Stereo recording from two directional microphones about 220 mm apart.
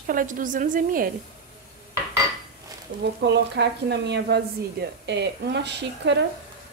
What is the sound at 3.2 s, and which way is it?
Speech, 50° right (ahead or behind).